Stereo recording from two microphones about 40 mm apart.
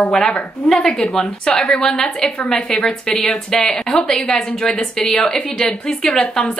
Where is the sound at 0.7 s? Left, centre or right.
Centre.